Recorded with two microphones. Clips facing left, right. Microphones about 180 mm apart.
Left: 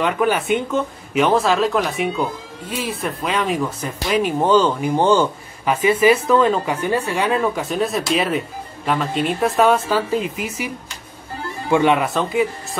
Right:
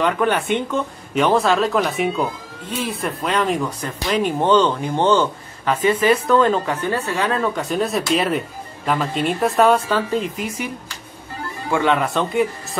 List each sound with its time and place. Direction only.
0.0 s speech: 5° left (ahead or behind)
11.7 s speech: 15° left (ahead or behind)
12.0 s speech: centre (ahead or behind)